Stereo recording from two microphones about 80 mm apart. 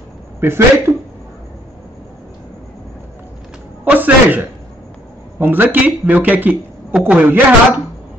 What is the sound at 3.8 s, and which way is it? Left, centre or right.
A woman's voice, right.